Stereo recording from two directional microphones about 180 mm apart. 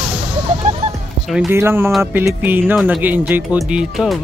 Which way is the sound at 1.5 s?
15° right (ahead or behind).